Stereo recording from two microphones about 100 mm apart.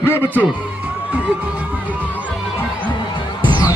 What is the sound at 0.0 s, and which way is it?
Speech, 20° right (ahead or behind).